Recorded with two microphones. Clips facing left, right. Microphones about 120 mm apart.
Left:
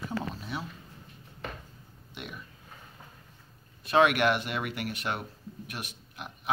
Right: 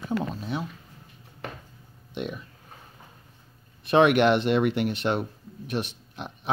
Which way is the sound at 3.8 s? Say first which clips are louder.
Right 5 dB; 25° right (ahead or behind).